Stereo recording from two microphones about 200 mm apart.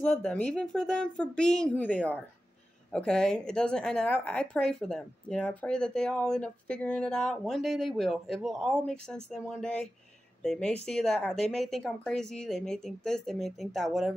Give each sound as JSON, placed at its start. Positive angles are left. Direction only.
{"t": 0.0, "sound": "speech", "side_deg": 5}